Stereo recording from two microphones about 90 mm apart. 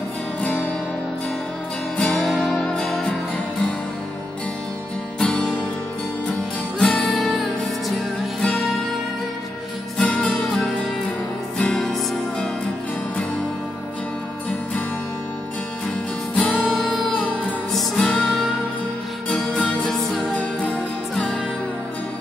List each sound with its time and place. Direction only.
0.4 s music: 15° left (ahead or behind)
2.0 s music: 10° left (ahead or behind)
5.2 s music: 10° left (ahead or behind)
6.8 s music: 5° left (ahead or behind)
9.9 s music: 10° left (ahead or behind)
16.3 s music: 10° left (ahead or behind)
17.9 s music: 10° left (ahead or behind)
19.2 s music: 15° left (ahead or behind)